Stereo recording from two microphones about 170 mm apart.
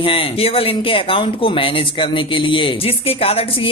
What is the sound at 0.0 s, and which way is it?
Speech, 30° left (ahead or behind).